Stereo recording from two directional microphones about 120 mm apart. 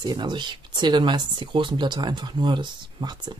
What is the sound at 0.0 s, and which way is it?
Speech, 35° right (ahead or behind).